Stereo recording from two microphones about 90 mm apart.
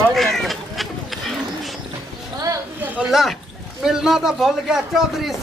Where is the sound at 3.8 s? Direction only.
5° right (ahead or behind).